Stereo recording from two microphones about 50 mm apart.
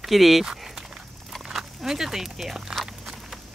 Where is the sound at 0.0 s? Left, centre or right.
Centre.